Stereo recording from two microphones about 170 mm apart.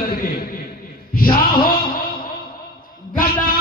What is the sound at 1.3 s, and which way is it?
Speech, 60° left (ahead or behind).